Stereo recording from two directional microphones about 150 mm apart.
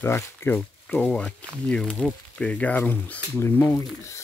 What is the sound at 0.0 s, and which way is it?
Speech, 15° left (ahead or behind).